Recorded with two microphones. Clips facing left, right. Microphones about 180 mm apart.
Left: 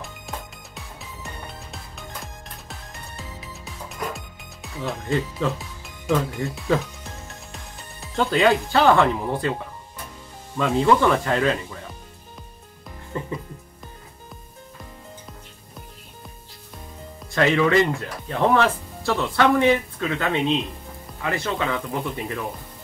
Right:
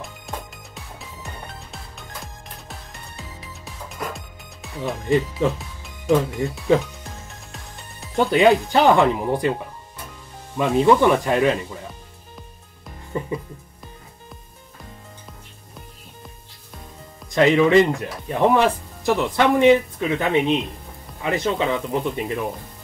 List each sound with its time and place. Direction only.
0.3 s music: centre (ahead or behind)
5.4 s speech: 20° right (ahead or behind)
8.2 s speech: 20° right (ahead or behind)
10.6 s speech: 20° right (ahead or behind)
13.1 s music: 15° right (ahead or behind)
17.3 s speech: 20° right (ahead or behind)